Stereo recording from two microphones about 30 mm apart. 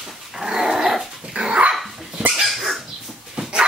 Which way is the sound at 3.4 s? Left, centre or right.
Right.